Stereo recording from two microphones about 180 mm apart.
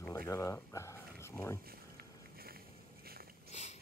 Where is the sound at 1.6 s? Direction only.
55° right (ahead or behind).